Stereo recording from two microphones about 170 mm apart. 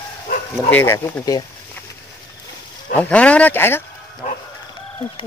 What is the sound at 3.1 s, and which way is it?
Speech, 5° left (ahead or behind).